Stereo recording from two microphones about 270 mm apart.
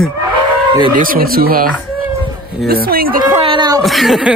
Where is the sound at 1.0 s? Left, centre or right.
Right.